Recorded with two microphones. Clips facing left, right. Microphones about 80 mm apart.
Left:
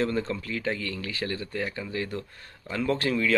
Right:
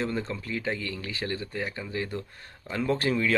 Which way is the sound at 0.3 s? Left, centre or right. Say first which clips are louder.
Left 1 dB; centre.